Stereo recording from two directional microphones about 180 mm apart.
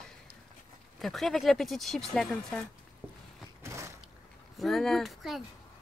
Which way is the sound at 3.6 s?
15° right (ahead or behind).